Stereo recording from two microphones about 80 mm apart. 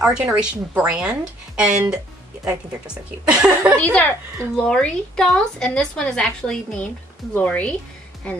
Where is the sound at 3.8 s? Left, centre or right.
Left.